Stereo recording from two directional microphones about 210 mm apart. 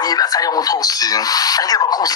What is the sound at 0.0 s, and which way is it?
Speech, 20° left (ahead or behind).